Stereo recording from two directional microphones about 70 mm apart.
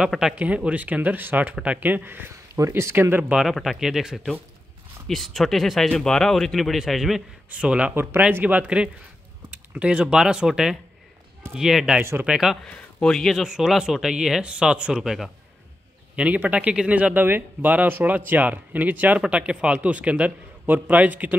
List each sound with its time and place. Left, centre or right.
0.1 s speech: centre
0.6 s speech: right
3.4 s speech: centre
7.4 s speech: centre
7.9 s speech: right; by 12.5 s centre
12.6 s speech: centre
13.4 s speech: centre
16.2 s speech: right